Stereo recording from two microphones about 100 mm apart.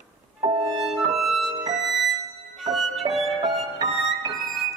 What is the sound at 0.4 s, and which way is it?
Music, 65° right (ahead or behind).